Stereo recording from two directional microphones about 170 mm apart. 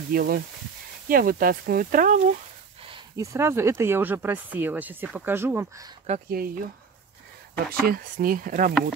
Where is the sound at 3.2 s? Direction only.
15° right (ahead or behind).